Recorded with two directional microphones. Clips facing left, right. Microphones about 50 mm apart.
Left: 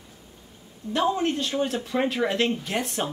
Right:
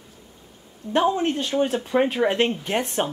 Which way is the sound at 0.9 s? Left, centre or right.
Right.